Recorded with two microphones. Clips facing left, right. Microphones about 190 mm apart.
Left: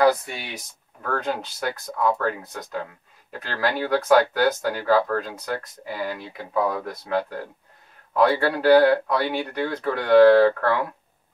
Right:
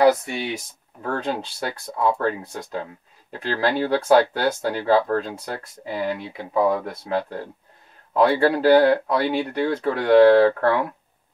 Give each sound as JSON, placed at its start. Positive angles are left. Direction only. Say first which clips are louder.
{"t": 1.0, "sound": "speech", "louder": "right 1 dB", "side_deg": -30}